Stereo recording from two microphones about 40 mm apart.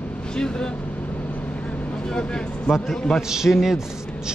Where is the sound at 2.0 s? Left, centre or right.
Left.